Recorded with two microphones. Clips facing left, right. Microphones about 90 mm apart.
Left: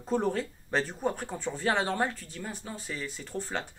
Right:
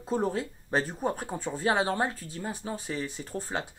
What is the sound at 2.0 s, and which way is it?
Speech, 35° right (ahead or behind).